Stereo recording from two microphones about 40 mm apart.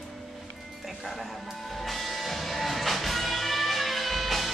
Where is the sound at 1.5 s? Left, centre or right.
Centre.